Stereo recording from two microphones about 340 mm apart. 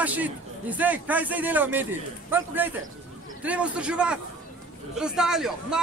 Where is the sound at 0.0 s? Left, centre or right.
Centre.